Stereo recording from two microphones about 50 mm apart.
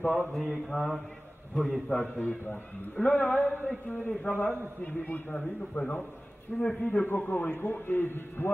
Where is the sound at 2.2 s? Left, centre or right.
Left.